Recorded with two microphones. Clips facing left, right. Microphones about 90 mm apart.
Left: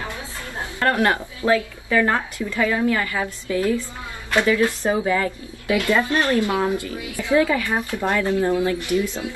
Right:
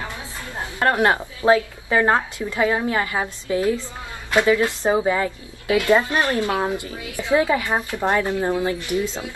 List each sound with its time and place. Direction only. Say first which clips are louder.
0.6 s a woman's voice: right 1 dB; 20° right (ahead or behind)